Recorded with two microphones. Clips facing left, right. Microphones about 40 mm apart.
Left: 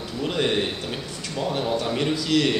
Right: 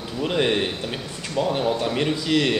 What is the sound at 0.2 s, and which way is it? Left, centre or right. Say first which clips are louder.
A man's voice: right 2 dB; centre.